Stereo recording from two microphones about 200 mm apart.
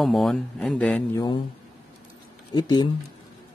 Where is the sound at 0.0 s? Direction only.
Centre (ahead or behind).